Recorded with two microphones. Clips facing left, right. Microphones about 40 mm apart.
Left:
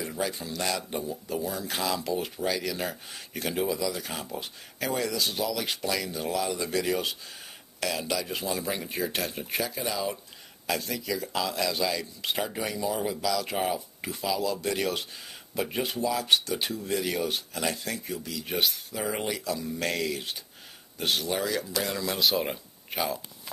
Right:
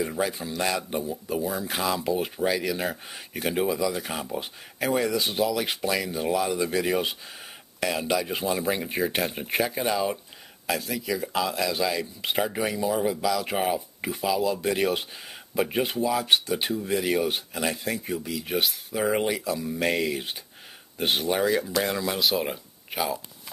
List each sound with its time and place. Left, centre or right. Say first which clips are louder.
0.0 s speech: right 4 dB; right
10.7 s speech: right 2 dB; centre
18.5 s speech: right 1 dB; centre
18.9 s speech: right 6 dB; right
22.1 s speech: right 1 dB; centre